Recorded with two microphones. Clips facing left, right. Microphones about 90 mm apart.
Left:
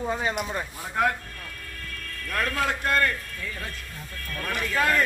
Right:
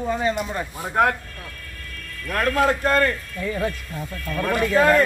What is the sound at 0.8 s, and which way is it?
Speech, 50° right (ahead or behind).